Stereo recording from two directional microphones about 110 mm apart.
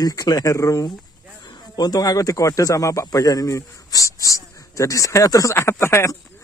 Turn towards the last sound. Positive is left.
turn(degrees=25)  # may be behind; listen again after turning